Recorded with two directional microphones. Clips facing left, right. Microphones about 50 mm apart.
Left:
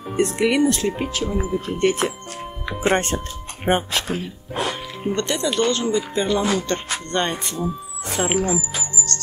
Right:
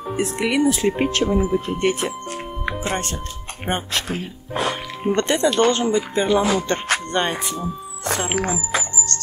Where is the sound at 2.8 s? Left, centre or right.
Left.